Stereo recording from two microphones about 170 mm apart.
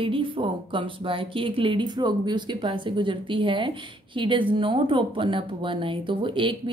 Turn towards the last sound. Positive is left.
turn(degrees=-30)  # may be behind; listen again after turning